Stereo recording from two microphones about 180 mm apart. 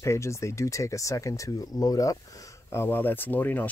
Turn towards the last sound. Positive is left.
turn(degrees=10)  # may be behind; listen again after turning